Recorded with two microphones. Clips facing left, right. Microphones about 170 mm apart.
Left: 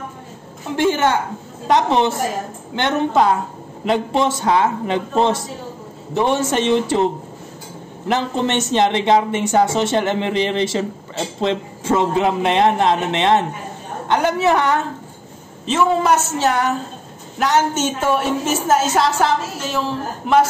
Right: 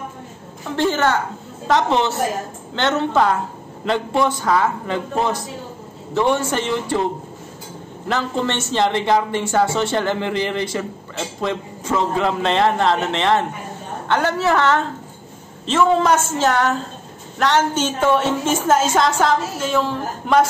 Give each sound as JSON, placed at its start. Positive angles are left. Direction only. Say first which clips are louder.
{"t": 0.7, "sound": "a sound", "louder": "left 1 dB", "side_deg": 15}
{"t": 1.7, "sound": "a woman's voice", "louder": "left 2 dB", "side_deg": 15}
{"t": 8.1, "sound": "a woman's voice", "louder": "left 2 dB", "side_deg": 20}